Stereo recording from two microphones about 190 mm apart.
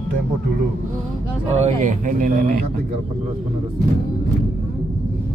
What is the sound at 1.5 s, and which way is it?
Speech, 40° right (ahead or behind).